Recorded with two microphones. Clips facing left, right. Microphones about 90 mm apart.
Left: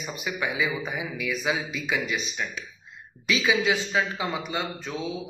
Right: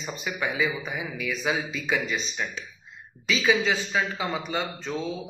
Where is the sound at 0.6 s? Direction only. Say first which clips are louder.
Even; 20° left (ahead or behind).